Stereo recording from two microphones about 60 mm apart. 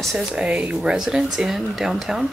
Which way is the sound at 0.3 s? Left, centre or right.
Centre.